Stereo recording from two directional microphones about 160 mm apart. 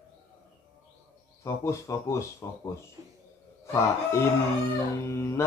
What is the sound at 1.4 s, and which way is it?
Speech, 20° left (ahead or behind).